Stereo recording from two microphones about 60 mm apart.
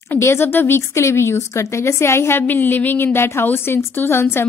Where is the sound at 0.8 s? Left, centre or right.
Left.